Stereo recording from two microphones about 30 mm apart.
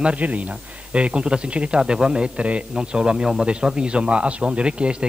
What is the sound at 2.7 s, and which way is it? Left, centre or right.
A man's voice, right.